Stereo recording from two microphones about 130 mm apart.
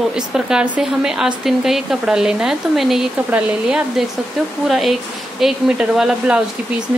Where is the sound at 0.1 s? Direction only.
5° right (ahead or behind).